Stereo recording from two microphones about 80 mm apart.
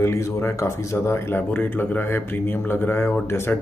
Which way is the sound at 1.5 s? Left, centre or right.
Left.